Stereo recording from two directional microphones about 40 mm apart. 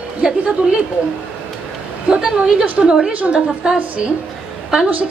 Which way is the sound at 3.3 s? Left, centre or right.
Right.